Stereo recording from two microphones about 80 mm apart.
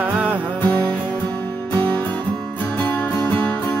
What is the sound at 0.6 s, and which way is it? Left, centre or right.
Music, centre.